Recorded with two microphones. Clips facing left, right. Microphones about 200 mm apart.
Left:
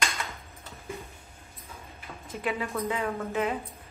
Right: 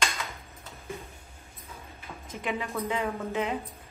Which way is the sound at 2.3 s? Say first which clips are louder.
Left 2 dB; 15° right (ahead or behind).